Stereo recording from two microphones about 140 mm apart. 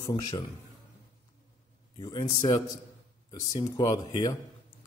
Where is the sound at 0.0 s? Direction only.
35° left (ahead or behind).